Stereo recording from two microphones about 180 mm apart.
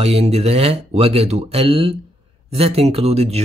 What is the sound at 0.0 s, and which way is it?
Speech, 35° right (ahead or behind).